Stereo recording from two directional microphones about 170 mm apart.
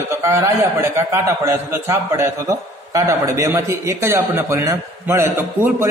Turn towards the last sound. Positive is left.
turn(degrees=-10)  # may be behind; listen again after turning